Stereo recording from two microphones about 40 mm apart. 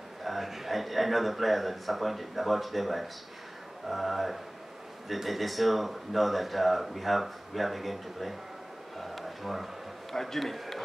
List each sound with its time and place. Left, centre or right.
0.2 s speech: centre
8.9 s a sound: centre
10.1 s speech: centre